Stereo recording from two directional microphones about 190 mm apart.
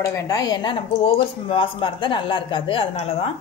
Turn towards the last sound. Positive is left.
turn(degrees=30)  # may be behind; listen again after turning